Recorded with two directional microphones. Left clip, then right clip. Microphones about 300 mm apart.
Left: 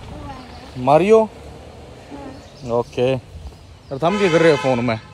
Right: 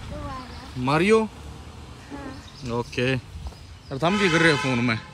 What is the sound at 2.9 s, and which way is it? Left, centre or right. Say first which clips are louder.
Speech: left 6 dB; centre.